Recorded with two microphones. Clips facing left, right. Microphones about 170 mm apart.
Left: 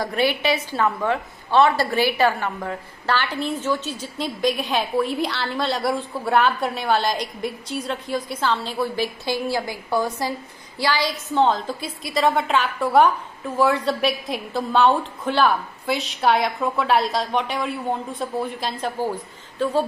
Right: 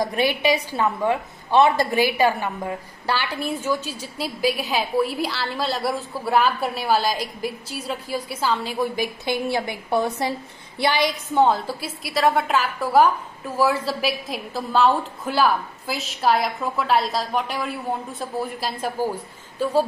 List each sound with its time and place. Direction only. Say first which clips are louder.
0.0 s a woman's voice: right 1 dB; 15° right (ahead or behind)
11.4 s a woman's voice: right 1 dB; 10° right (ahead or behind)